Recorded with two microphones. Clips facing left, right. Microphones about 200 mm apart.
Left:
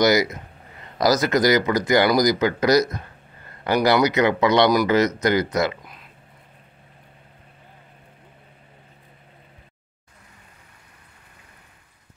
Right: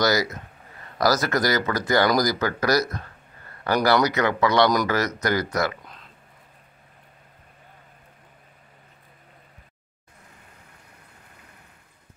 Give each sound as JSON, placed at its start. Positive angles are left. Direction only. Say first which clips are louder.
{"t": 0.0, "sound": "speech", "louder": "left 4 dB", "side_deg": 20}